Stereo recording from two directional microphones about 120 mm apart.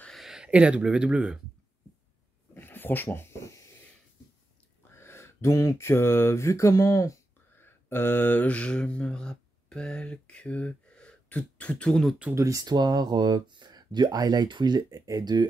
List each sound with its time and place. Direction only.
0.0 s speech: centre (ahead or behind)
2.5 s a sound: 15° left (ahead or behind)
4.9 s mantra: 20° left (ahead or behind); by 12.2 s 5° left (ahead or behind)
12.4 s speech: 30° right (ahead or behind)